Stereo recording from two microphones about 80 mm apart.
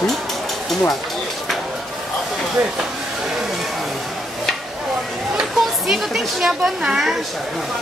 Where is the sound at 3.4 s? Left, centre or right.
Centre.